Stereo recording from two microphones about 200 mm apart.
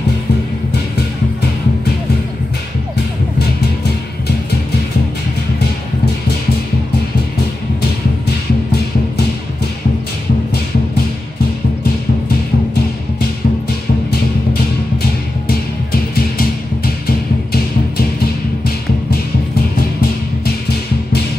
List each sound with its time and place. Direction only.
14.5 s music: 50° left (ahead or behind)